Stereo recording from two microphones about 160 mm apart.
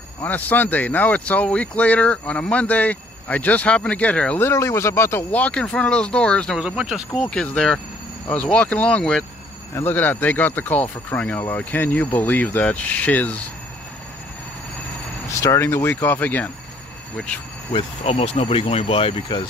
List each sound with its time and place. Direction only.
0.2 s speech: 10° left (ahead or behind)
15.2 s speech: 15° left (ahead or behind)
17.7 s speech: 40° left (ahead or behind)